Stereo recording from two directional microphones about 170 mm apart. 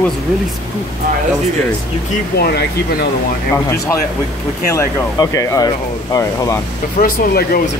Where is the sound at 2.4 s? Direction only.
70° left (ahead or behind).